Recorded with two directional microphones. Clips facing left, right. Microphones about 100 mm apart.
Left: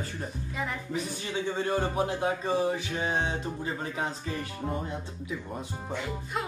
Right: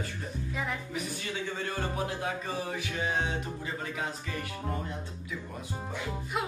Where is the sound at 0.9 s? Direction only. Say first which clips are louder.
Left 3 dB; 25° left (ahead or behind).